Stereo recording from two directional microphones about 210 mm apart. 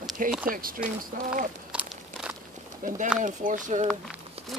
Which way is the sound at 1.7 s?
5° right (ahead or behind).